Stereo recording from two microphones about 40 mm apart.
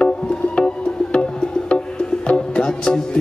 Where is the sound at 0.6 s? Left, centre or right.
Left.